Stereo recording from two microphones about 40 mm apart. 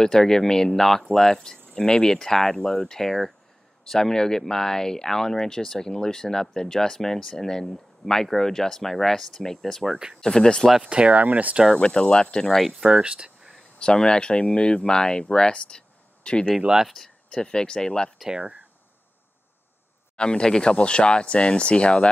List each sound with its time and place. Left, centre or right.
0.0 s speech: centre
10.8 s speech: right
11.1 s speech: right
11.7 s speech: centre
12.5 s speech: centre
12.8 s speech: right
13.7 s speech: left
16.8 s speech: centre
17.3 s speech: left
20.2 s speech: left